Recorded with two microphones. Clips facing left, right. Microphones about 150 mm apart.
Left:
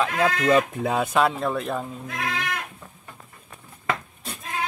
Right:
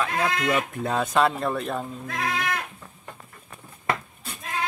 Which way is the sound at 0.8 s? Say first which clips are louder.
Left 1 dB; 5° left (ahead or behind).